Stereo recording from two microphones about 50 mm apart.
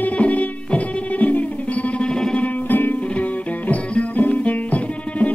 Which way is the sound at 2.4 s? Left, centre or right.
Left.